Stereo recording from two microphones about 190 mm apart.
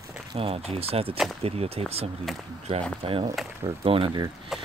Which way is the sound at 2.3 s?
Centre (ahead or behind).